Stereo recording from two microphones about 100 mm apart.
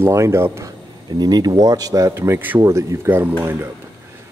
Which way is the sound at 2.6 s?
30° right (ahead or behind).